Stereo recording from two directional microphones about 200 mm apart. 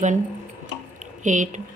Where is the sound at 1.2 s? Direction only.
40° right (ahead or behind).